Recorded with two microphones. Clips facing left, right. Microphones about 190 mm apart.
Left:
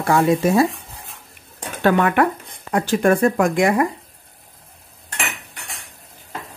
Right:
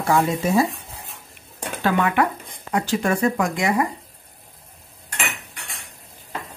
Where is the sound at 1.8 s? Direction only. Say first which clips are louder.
Left 4 dB; 55° left (ahead or behind).